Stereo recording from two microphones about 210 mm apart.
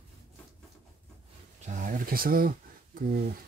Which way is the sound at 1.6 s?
40° right (ahead or behind).